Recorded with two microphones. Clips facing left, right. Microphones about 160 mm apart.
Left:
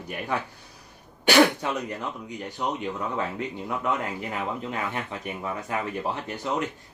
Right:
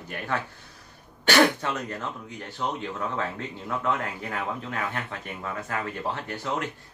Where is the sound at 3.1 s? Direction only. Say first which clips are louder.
Left 2 dB; 15° left (ahead or behind).